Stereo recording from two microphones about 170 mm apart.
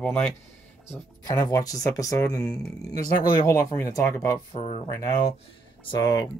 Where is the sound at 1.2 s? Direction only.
20° left (ahead or behind).